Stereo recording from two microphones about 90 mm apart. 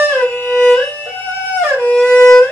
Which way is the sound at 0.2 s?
10° left (ahead or behind).